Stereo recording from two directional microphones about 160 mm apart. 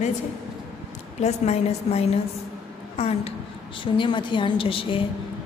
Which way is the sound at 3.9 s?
30° left (ahead or behind).